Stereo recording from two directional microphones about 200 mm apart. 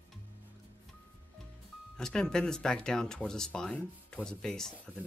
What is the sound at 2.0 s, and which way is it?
Speech, 5° left (ahead or behind).